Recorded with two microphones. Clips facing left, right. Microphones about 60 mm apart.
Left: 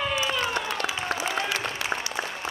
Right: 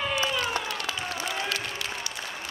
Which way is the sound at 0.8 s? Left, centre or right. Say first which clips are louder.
Left 3 dB; centre.